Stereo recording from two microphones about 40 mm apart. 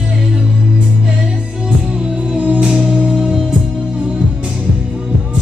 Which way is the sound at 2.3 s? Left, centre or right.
Right.